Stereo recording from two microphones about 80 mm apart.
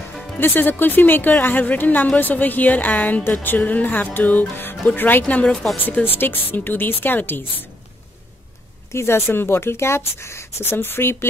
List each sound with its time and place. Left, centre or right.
0.2 s a woman's voice: left
5.3 s speech: centre
5.9 s a woman's voice: left
8.9 s speech: left